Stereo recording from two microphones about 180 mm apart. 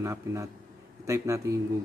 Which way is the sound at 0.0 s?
15° right (ahead or behind).